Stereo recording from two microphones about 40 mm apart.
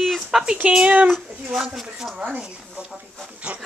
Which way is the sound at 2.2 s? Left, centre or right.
Right.